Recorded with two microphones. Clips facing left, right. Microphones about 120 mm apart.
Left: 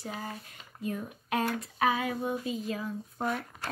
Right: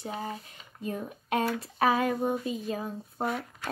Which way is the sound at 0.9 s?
30° right (ahead or behind).